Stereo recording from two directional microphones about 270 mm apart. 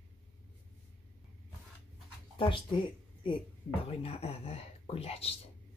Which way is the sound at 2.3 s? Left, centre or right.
Centre.